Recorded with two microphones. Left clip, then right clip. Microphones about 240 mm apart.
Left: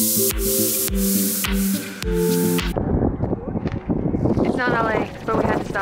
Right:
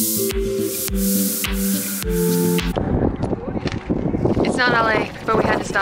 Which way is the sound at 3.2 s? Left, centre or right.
Left.